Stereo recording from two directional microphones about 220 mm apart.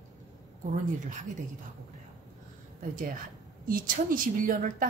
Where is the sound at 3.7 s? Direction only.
40° right (ahead or behind).